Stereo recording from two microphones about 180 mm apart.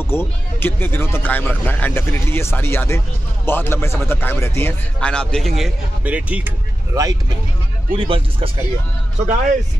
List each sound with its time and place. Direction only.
0.0 s a man's voice: 15° left (ahead or behind); by 7.2 s 20° right (ahead or behind)
7.9 s speech: 30° right (ahead or behind)